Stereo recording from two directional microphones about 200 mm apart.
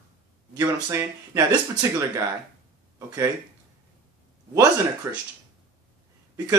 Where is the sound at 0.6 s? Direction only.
15° right (ahead or behind).